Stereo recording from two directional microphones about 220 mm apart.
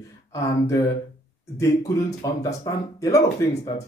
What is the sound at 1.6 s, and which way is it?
Speech, 15° left (ahead or behind).